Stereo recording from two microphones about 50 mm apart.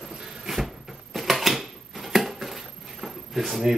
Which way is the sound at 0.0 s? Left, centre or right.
Centre.